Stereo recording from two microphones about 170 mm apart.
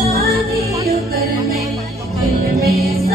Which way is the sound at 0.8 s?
65° right (ahead or behind).